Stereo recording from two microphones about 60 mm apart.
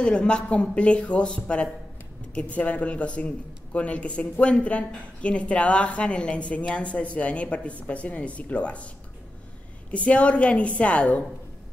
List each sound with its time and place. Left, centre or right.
0.0 s a man's voice: centre